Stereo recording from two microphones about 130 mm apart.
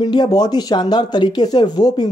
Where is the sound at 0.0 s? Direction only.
30° left (ahead or behind).